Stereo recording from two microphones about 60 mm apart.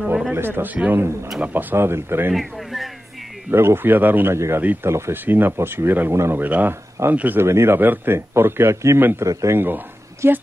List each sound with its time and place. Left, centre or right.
0.3 s a man's voice: right
1.4 s speech: right
2.3 s a sound: centre
3.5 s speech: right
4.3 s a man's voice: right
5.1 s speech: right
6.4 s speech: right
7.4 s a man's voice: right
9.2 s a man's voice: right
10.2 s a man's voice: right